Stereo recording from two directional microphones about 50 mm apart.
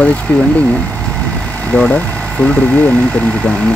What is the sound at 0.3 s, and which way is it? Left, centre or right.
Speech, left.